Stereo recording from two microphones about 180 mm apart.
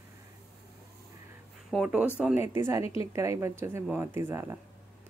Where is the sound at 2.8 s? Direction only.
30° left (ahead or behind).